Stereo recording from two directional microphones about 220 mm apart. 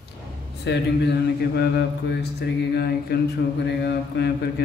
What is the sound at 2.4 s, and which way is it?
Mantra, 45° left (ahead or behind).